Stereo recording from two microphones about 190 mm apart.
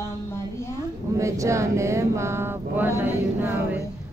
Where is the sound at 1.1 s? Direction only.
15° right (ahead or behind).